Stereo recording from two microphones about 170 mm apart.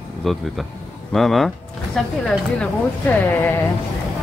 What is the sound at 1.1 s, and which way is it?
Speech, centre (ahead or behind).